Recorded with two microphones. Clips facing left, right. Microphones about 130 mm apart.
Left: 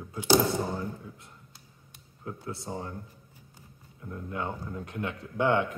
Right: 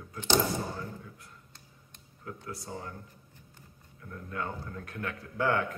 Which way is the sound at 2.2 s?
25° left (ahead or behind).